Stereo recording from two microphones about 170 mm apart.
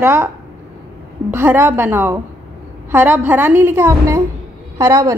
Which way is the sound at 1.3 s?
10° right (ahead or behind).